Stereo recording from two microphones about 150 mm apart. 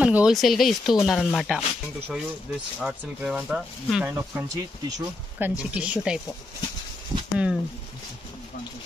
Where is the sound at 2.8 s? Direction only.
5° right (ahead or behind).